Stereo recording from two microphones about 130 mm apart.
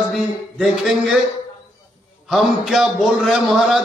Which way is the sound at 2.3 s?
Centre (ahead or behind).